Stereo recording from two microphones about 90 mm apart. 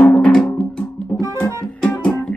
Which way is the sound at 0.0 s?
15° left (ahead or behind).